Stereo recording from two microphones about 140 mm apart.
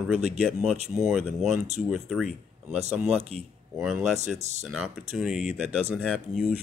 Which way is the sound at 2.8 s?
50° right (ahead or behind).